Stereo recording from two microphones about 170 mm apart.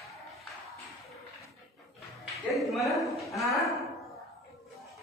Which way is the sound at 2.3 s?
Centre (ahead or behind).